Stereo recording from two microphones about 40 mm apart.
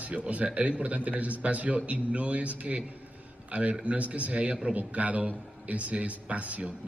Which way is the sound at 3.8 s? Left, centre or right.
Right.